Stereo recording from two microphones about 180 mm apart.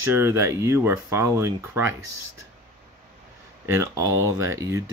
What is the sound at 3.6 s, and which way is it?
Speech, 15° right (ahead or behind).